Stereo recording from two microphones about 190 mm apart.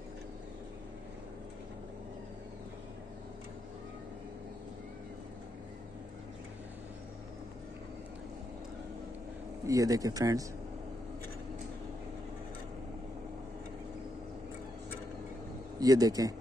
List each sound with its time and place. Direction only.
9.7 s speech: 20° right (ahead or behind)
15.8 s speech: 20° right (ahead or behind)